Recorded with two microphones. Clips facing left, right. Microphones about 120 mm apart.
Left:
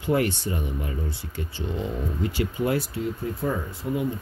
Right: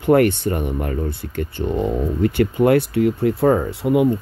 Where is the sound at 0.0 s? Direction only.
60° right (ahead or behind).